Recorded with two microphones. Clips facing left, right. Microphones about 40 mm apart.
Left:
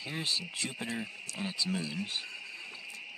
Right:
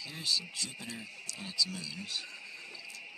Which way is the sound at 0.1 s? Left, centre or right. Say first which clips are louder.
Even; left.